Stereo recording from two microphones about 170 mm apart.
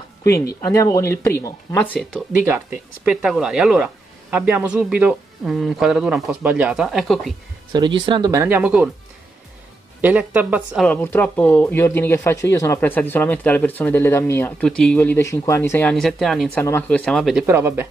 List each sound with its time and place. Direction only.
0.7 s speech: 20° left (ahead or behind)
1.9 s speech: centre (ahead or behind)
2.4 s speech: 10° right (ahead or behind)
7.7 s speech: 25° right (ahead or behind); by 8.9 s 10° right (ahead or behind)
10.0 s speech: 10° right (ahead or behind)
10.9 s speech: 10° left (ahead or behind)
15.9 s speech: centre (ahead or behind)
17.5 s speech: 15° right (ahead or behind)